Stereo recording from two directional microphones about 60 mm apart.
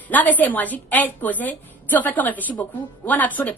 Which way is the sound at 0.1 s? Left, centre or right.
Left.